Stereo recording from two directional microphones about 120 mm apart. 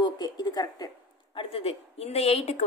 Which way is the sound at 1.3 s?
50° left (ahead or behind).